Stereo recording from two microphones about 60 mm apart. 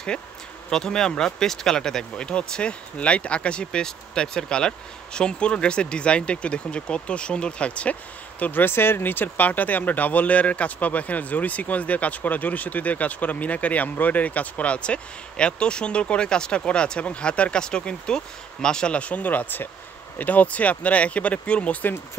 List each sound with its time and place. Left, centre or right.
0.7 s speech: centre